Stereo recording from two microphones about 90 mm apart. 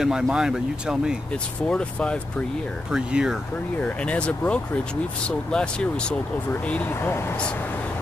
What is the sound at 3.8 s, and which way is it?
Speech, 15° left (ahead or behind).